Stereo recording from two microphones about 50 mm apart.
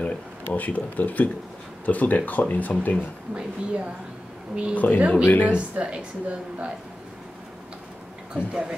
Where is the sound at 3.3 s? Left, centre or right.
Right.